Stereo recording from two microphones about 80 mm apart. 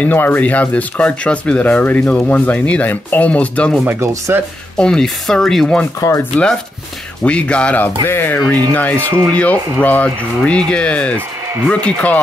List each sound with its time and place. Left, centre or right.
0.0 s speech: left
3.8 s speech: right
4.7 s speech: centre
5.9 s speech: left
7.2 s speech: centre
8.0 s speech: left